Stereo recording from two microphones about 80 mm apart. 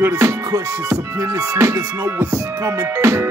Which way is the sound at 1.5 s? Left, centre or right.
Right.